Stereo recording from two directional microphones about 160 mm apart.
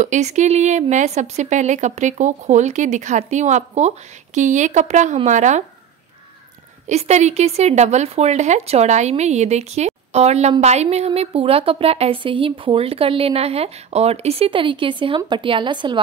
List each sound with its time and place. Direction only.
0.0 s a woman's voice: 45° right (ahead or behind)
6.9 s a woman's voice: 45° right (ahead or behind)